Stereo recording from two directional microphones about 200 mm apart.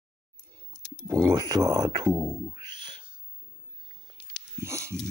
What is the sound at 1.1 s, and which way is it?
Speech, 15° right (ahead or behind).